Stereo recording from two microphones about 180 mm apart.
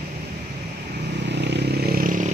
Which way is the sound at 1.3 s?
70° right (ahead or behind).